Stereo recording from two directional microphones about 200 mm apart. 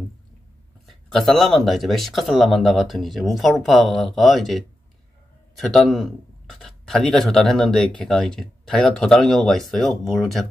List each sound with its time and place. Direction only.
0.8 s speech: centre (ahead or behind)